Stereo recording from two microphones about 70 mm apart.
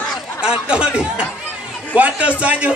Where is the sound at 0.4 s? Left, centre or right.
Centre.